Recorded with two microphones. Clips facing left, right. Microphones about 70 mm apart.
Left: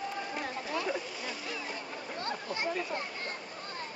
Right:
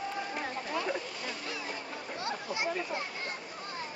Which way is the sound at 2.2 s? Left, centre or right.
Centre.